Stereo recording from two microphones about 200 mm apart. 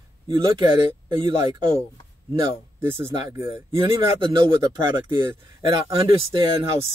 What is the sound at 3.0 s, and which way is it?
Speech, 15° right (ahead or behind).